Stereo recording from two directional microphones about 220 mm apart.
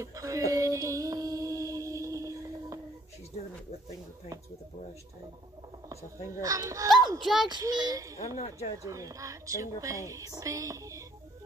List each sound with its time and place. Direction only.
0.0 s female singing: 15° right (ahead or behind)
6.2 s a woman's voice: 15° right (ahead or behind)
7.2 s a child's voice: centre (ahead or behind)
7.4 s a woman's voice: 20° right (ahead or behind)
8.4 s speech: 30° left (ahead or behind)
8.7 s a woman's voice: 15° right (ahead or behind)